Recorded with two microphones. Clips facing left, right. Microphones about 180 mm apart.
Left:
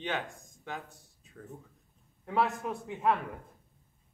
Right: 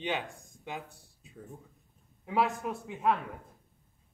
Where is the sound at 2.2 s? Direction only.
5° right (ahead or behind).